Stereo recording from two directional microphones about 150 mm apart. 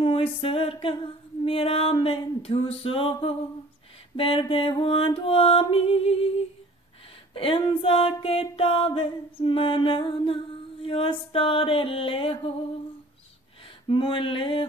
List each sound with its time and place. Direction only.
0.0 s music: 35° left (ahead or behind)
7.3 s music: 35° left (ahead or behind)
13.8 s music: 35° left (ahead or behind)